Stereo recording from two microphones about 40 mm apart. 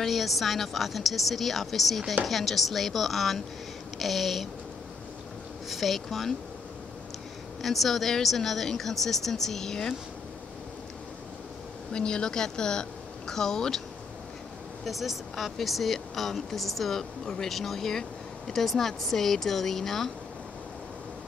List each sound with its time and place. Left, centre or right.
0.0 s a woman's voice: centre
5.7 s a woman's voice: centre
7.6 s speech: centre
11.9 s speech: centre
14.9 s a woman's voice: centre